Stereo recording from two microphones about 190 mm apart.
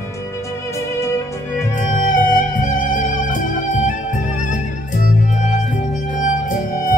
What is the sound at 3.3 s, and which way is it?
Music, 40° left (ahead or behind).